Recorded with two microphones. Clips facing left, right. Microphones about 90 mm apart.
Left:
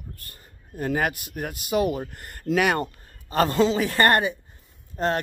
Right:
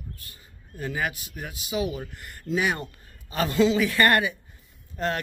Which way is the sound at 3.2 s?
40° left (ahead or behind).